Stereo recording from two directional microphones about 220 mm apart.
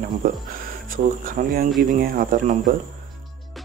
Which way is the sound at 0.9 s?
40° right (ahead or behind).